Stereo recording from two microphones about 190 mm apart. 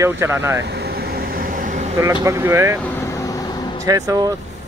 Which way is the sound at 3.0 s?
15° left (ahead or behind).